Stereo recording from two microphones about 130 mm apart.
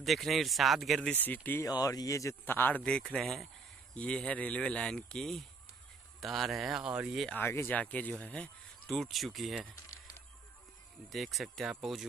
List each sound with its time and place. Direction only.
0.0 s speech: centre (ahead or behind)
1.2 s speech: 15° left (ahead or behind)
1.7 s speech: 30° left (ahead or behind); by 7.2 s 10° right (ahead or behind)
7.3 s speech: 15° left (ahead or behind); by 9.7 s centre (ahead or behind)
11.1 s speech: centre (ahead or behind)